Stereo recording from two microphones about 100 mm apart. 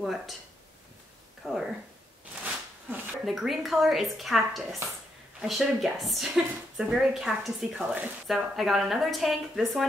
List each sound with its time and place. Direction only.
0.0 s a woman's voice: centre (ahead or behind)
1.4 s speech: 5° right (ahead or behind)
2.4 s a sound: 15° right (ahead or behind)
3.3 s a woman's voice: centre (ahead or behind)